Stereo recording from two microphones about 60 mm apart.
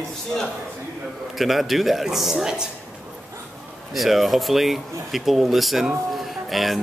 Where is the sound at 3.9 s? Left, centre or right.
Centre.